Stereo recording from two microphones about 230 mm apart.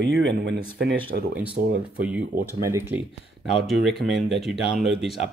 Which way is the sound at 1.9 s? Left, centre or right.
Centre.